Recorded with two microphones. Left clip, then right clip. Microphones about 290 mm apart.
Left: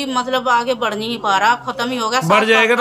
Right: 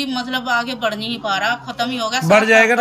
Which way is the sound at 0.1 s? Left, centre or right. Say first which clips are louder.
Left 6 dB; centre.